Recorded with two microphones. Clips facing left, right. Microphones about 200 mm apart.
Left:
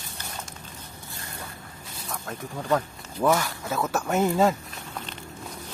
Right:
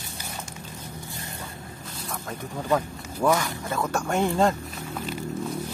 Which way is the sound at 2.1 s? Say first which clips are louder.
Even; centre (ahead or behind).